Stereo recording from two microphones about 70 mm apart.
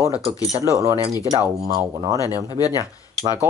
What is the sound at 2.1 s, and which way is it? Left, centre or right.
Speech, left.